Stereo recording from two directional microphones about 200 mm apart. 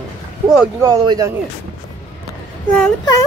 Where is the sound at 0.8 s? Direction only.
20° right (ahead or behind).